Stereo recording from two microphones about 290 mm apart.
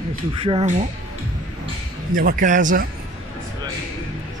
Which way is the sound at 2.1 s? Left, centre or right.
Right.